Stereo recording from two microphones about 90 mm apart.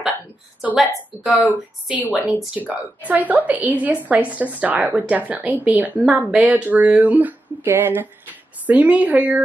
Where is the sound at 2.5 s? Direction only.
20° right (ahead or behind).